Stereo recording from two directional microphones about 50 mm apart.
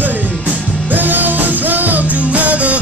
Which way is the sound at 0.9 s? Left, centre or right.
Right.